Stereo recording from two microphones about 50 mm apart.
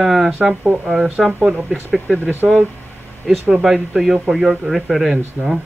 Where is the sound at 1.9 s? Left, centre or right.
Centre.